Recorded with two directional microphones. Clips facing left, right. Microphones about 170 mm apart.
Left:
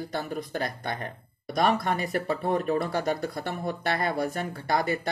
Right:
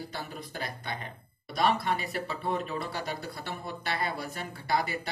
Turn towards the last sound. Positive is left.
turn(degrees=45)  # may be behind; listen again after turning